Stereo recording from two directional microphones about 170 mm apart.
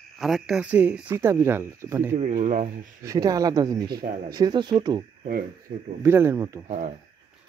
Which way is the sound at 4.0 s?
55° right (ahead or behind).